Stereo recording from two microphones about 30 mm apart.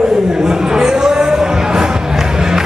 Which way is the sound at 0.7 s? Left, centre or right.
Right.